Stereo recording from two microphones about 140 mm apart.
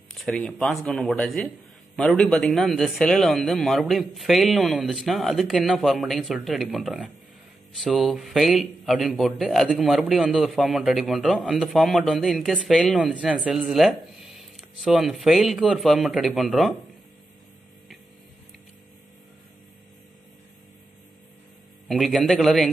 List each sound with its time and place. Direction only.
0.2 s a man's voice: centre (ahead or behind)
12.9 s a man's voice: 5° right (ahead or behind)
21.8 s a man's voice: centre (ahead or behind)